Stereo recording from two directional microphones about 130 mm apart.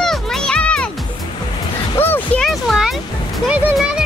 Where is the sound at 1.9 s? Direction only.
15° left (ahead or behind).